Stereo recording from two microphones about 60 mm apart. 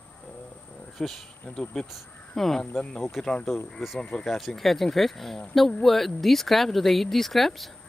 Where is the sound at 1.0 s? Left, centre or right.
Centre.